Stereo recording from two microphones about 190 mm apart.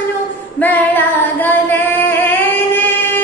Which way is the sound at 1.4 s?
10° left (ahead or behind).